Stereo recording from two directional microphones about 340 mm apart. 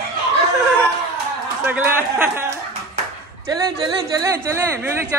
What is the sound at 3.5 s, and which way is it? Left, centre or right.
Speech, centre.